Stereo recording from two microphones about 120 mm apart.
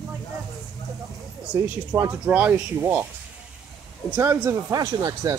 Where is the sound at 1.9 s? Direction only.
25° right (ahead or behind).